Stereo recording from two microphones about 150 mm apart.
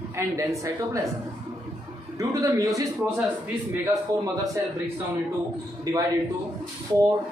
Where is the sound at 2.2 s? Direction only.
25° right (ahead or behind).